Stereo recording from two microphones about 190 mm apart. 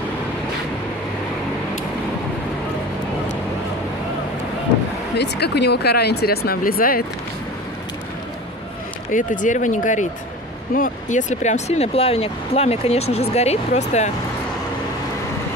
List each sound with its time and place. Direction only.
5.1 s speech: 60° left (ahead or behind)
9.1 s speech: 45° left (ahead or behind)